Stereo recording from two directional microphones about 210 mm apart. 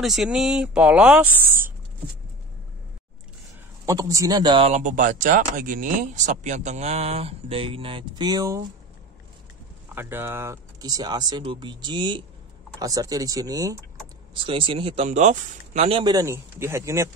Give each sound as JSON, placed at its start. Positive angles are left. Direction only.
{"t": 0.0, "sound": "speech", "side_deg": 0}
{"t": 3.8, "sound": "speech", "side_deg": -15}
{"t": 9.9, "sound": "speech", "side_deg": -10}